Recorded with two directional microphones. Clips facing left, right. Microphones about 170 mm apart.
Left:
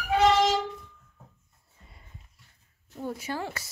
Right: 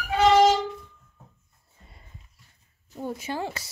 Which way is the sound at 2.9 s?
20° right (ahead or behind).